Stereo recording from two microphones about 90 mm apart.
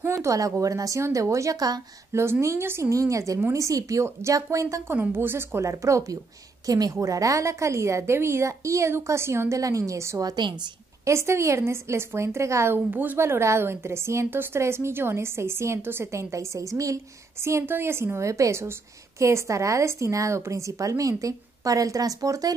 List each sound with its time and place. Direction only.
0.0 s a woman's voice: 35° right (ahead or behind)
2.4 s a woman's voice: 30° right (ahead or behind)
4.9 s a woman's voice: 20° right (ahead or behind)
10.2 s a woman's voice: 55° right (ahead or behind)
11.1 s a woman's voice: 30° right (ahead or behind)